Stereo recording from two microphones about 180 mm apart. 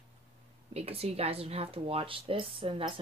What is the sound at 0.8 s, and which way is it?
Speech, 35° right (ahead or behind).